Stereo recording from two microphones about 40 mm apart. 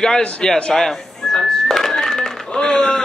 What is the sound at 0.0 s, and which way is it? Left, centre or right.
Speech, centre.